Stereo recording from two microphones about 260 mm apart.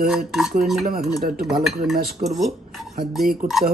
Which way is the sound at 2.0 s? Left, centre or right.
Right.